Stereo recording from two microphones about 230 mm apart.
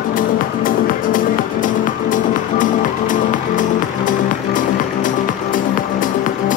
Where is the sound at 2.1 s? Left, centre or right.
Left.